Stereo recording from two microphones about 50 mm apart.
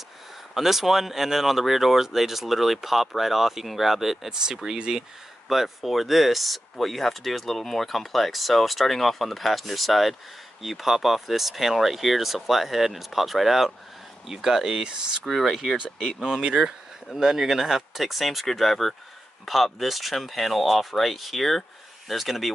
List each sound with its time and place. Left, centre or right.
0.6 s speech: centre
5.5 s speech: centre
15.2 s speech: centre